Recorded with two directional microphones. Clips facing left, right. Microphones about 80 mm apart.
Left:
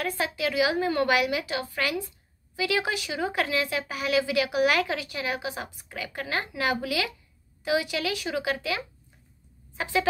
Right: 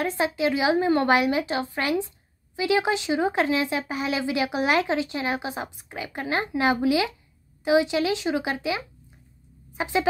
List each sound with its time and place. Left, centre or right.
0.0 s a woman's voice: right